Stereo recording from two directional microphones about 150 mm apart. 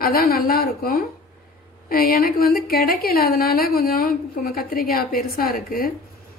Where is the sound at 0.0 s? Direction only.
85° left.